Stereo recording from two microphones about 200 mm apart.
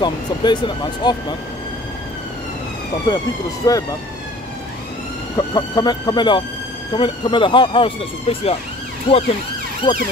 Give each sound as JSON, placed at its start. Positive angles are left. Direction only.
{"t": 0.0, "sound": "speech", "side_deg": 20}
{"t": 3.6, "sound": "speech", "side_deg": 20}
{"t": 5.3, "sound": "speech", "side_deg": 20}